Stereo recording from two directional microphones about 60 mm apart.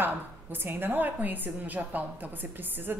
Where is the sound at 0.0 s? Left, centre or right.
Right.